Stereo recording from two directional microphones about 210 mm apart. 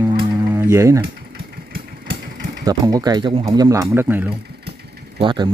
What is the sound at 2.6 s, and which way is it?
Speech, 20° right (ahead or behind).